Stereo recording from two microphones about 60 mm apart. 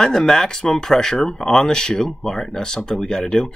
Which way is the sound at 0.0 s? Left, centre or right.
Centre.